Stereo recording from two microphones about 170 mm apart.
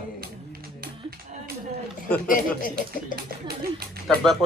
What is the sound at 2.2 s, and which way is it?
Snicker, 55° left (ahead or behind).